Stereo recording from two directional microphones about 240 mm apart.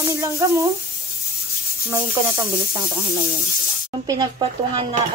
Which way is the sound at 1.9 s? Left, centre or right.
Centre.